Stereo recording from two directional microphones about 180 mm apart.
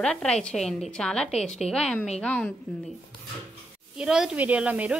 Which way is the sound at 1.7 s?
Centre (ahead or behind).